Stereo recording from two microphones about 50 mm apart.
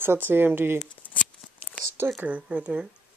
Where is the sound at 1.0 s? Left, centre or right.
Left.